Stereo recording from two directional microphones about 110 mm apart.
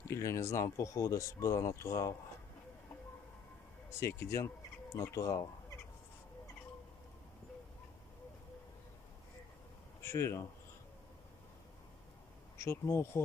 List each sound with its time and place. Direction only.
0.0 s speech: 25° left (ahead or behind)
3.9 s speech: 25° left (ahead or behind)
10.0 s speech: 20° left (ahead or behind)
12.6 s speech: 25° left (ahead or behind)